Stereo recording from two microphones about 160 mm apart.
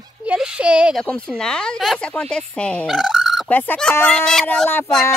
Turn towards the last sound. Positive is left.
turn(degrees=10)  # may be behind; listen again after turning